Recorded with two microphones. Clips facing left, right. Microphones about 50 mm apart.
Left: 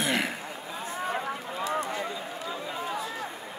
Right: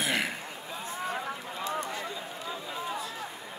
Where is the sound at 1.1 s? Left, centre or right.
Centre.